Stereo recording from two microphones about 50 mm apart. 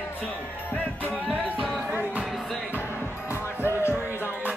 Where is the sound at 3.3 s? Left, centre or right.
Left.